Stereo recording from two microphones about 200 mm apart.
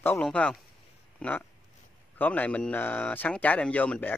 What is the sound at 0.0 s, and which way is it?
Speech, 5° left (ahead or behind).